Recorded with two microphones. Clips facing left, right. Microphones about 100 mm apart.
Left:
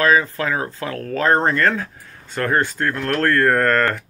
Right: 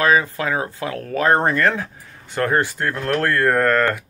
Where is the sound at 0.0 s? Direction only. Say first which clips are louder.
Even; 15° right (ahead or behind).